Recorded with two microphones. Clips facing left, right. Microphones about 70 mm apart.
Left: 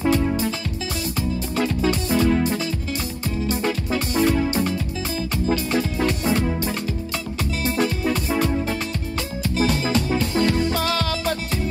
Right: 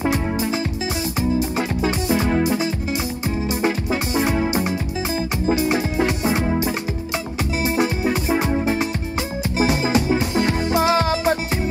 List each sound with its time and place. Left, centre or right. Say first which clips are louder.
0.0 s music: left 1 dB; right
1.6 s music: even; right